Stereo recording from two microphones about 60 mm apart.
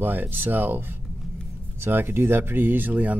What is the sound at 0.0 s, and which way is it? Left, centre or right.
Speech, right.